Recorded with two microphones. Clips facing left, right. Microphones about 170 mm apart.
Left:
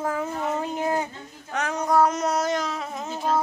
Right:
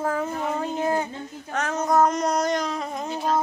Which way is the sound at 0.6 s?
15° left (ahead or behind).